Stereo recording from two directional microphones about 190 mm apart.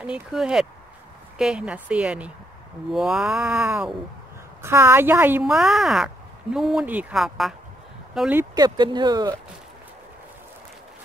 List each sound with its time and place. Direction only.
0.0 s speech: 5° right (ahead or behind)
8.5 s speech: 20° right (ahead or behind)